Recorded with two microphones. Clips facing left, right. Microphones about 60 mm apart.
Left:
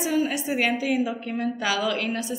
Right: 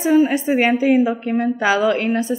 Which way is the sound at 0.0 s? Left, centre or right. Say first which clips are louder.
Right 9 dB; right.